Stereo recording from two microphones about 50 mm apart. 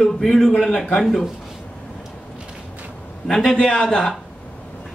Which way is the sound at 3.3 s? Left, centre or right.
Centre.